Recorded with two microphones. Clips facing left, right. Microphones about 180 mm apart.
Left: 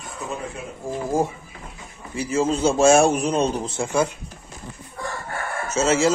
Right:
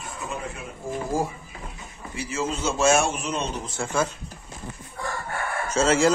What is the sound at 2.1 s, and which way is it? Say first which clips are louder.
A man's voice: left 7 dB; 40° left (ahead or behind).